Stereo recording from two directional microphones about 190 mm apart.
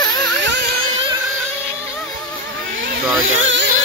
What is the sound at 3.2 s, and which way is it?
Speech, 90° right.